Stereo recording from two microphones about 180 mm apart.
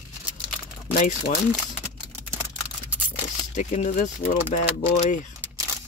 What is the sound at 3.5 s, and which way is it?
Speech, 45° left (ahead or behind).